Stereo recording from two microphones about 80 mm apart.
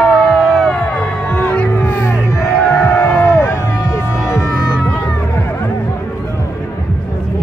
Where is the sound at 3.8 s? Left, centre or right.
Left.